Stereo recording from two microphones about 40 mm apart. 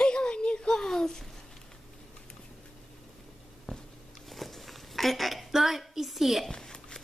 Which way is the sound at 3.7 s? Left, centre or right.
Centre.